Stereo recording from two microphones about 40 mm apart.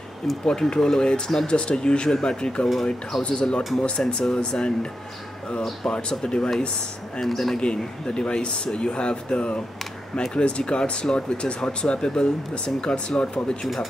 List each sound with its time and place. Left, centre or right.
0.5 s speech: centre
5.9 s speech: left
7.2 s speech: centre
7.6 s speech: left